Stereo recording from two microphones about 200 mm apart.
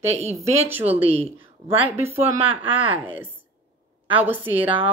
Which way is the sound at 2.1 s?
25° right (ahead or behind).